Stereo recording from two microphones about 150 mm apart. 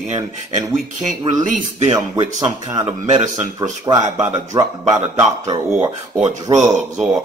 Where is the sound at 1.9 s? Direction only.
20° right (ahead or behind).